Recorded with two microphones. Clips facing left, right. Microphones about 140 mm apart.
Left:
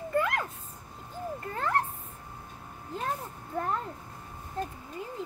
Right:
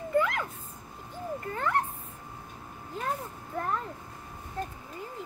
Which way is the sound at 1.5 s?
35° left (ahead or behind).